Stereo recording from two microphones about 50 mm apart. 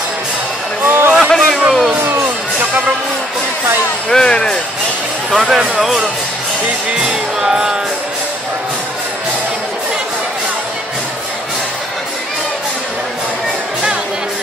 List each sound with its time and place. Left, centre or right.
0.8 s a sound: right
1.2 s a sound: centre
1.7 s music: centre
4.1 s speech: centre
5.3 s speech: centre
7.0 s music: centre